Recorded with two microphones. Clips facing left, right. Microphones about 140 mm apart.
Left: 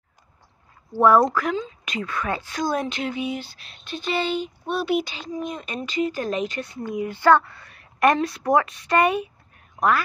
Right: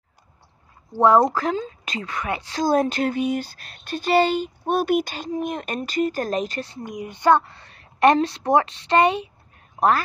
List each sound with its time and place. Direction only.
0.9 s a woman's voice: 20° right (ahead or behind)
1.6 s a sound: 35° right (ahead or behind)
2.0 s a woman's voice: 20° right (ahead or behind)
2.6 s speech: 40° right (ahead or behind)
6.8 s a woman's voice: 15° right (ahead or behind); by 10.0 s 35° right (ahead or behind)